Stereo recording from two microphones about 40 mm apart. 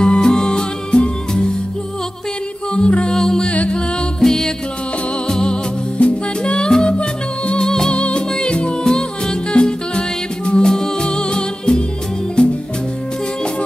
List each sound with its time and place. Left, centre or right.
0.0 s music: left
2.7 s music: left
3.4 s music: left
4.2 s music: centre; by 7.6 s left
7.6 s music: centre
7.9 s music: left